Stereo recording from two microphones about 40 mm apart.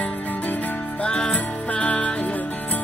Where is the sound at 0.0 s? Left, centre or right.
Left.